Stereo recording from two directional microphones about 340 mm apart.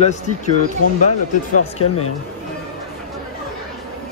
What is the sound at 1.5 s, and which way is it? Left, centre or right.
Speech, left.